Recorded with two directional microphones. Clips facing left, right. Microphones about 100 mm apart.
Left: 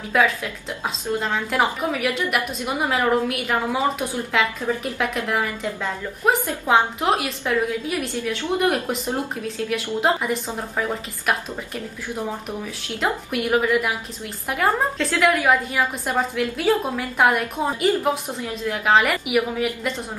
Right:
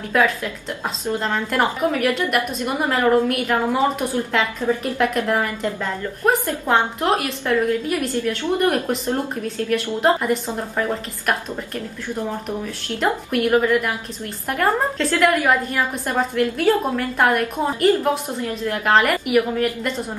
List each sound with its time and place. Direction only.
0.1 s a woman's voice: 5° left (ahead or behind)
13.0 s a woman's voice: 5° left (ahead or behind)